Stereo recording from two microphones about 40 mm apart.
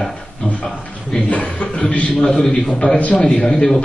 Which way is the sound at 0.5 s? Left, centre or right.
Left.